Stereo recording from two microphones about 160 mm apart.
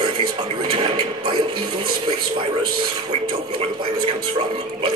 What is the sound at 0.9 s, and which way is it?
Speech, 30° right (ahead or behind).